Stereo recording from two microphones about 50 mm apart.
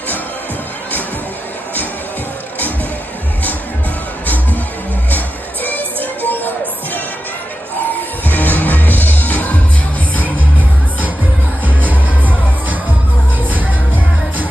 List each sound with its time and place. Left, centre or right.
5.1 s music: left
8.3 s music: left
11.6 s music: right